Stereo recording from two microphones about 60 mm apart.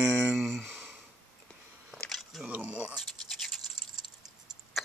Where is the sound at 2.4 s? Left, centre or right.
Right.